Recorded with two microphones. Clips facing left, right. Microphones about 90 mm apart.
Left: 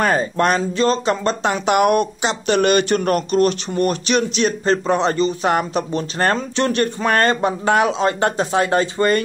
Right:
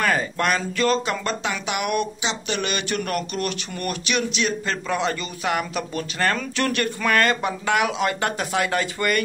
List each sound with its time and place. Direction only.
0.0 s speech: 30° left (ahead or behind)